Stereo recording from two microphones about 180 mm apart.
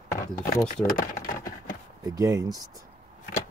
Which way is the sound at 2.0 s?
20° right (ahead or behind).